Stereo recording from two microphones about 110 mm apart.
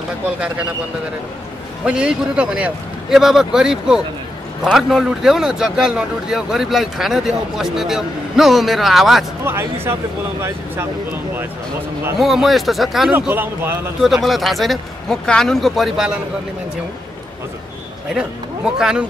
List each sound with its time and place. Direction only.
1.9 s a man's voice: 10° right (ahead or behind)
9.4 s speech: 20° right (ahead or behind)
12.2 s a man's voice: 5° right (ahead or behind)
13.3 s speech: 20° right (ahead or behind)
14.0 s a man's voice: centre (ahead or behind)
18.8 s a man's voice: 5° right (ahead or behind)